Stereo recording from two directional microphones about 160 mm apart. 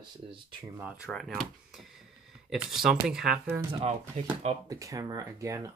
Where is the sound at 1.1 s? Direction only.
Centre (ahead or behind).